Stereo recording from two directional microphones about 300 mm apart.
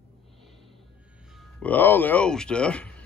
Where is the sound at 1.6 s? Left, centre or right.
Centre.